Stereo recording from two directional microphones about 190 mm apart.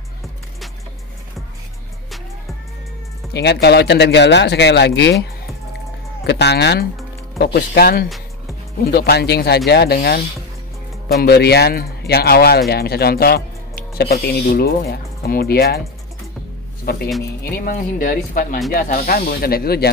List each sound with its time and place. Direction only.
3.6 s speech: 60° left (ahead or behind)
6.2 s speech: 60° left (ahead or behind)
16.9 s speech: 55° left (ahead or behind)